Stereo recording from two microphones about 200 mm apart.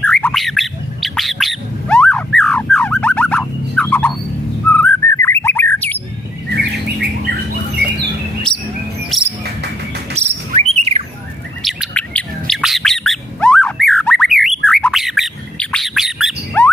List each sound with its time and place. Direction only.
0.0 s squawk: 5° left (ahead or behind)
4.6 s bird: 10° left (ahead or behind)
6.5 s bird: 55° right (ahead or behind)
9.1 s music: centre (ahead or behind)
10.1 s bird: 35° right (ahead or behind)
11.6 s bird: 5° left (ahead or behind)
14.7 s squawk: centre (ahead or behind)